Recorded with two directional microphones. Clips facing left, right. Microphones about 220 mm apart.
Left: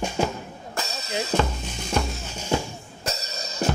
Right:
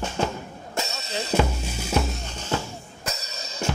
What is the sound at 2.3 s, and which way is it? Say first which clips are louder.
Music: left 3 dB; 10° left (ahead or behind).